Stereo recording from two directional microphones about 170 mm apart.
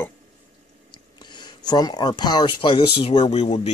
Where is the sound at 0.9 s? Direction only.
25° left (ahead or behind).